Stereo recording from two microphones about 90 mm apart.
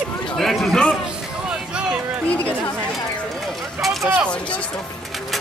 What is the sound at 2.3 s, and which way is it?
Speech, 15° left (ahead or behind).